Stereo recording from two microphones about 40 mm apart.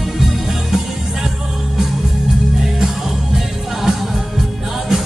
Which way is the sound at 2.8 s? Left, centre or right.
Centre.